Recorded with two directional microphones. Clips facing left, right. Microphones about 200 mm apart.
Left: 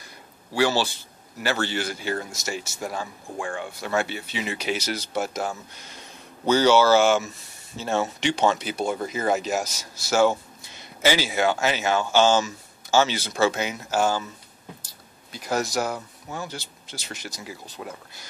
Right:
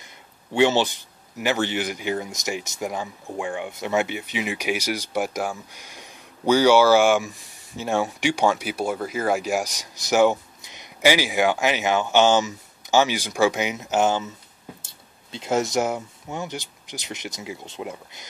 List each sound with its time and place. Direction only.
0.0 s a man's voice: 20° right (ahead or behind)